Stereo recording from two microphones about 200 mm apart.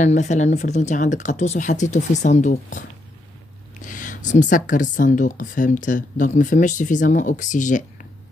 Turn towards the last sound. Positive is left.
turn(degrees=40)  # may be behind; listen again after turning